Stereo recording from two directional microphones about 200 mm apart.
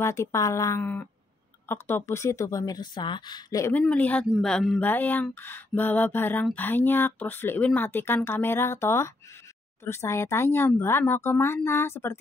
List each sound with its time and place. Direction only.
0.0 s speech: 15° left (ahead or behind)